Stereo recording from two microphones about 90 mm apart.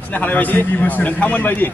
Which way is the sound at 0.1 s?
20° left (ahead or behind).